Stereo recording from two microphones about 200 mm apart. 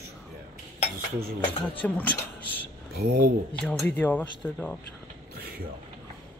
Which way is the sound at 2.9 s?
50° right (ahead or behind).